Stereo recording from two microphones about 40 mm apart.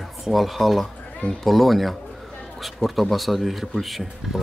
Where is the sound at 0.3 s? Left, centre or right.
Centre.